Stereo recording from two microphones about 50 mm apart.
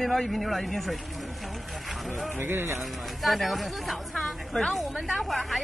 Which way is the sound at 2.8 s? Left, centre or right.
Centre.